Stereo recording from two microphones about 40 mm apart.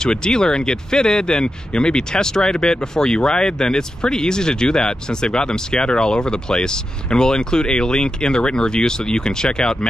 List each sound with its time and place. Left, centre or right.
0.0 s speech: centre